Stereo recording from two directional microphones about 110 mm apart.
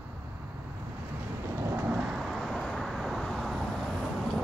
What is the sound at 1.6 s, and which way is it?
Thunder, 15° right (ahead or behind).